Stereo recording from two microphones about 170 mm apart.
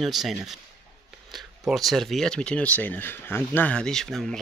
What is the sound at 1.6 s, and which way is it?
Speech, centre (ahead or behind).